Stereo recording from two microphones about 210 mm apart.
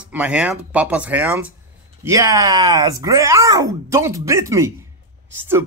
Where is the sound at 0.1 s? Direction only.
5° right (ahead or behind).